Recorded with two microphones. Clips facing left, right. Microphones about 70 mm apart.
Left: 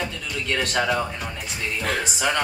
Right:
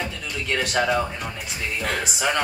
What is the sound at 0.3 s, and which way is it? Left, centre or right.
Speech, centre.